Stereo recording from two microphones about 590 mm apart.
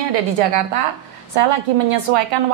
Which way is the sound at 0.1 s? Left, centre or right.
Right.